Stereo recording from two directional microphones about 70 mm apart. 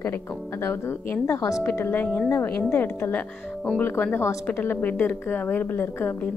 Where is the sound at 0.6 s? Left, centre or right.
Left.